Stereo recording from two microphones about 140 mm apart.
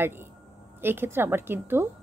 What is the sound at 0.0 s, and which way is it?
A woman's voice, 15° right (ahead or behind).